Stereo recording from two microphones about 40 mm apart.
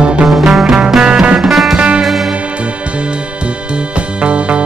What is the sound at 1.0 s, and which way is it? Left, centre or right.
Music, right.